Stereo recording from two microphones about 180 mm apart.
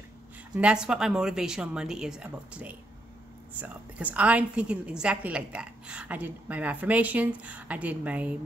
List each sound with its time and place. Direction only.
0.6 s a woman's voice: 5° right (ahead or behind)